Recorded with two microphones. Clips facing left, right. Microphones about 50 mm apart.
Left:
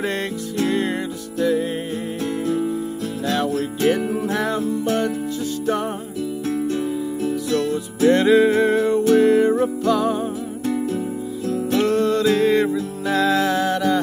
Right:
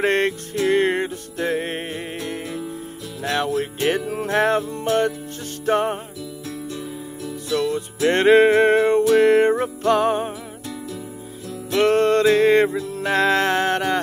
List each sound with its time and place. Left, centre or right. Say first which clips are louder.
0.0 s music: right 4 dB; right
3.3 s music: even; right
4.1 s music: right 3 dB; right
7.5 s music: left 1 dB; right
11.7 s music: right 3 dB; right